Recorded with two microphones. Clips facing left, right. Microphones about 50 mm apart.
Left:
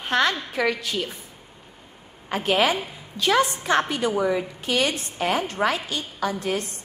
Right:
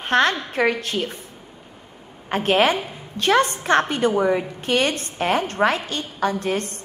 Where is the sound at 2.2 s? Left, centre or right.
Right.